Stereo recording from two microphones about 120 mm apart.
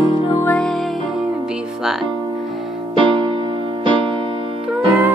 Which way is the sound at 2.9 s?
45° right (ahead or behind).